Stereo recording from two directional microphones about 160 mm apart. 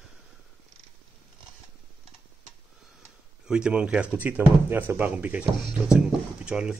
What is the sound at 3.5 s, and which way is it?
Speech, 5° right (ahead or behind).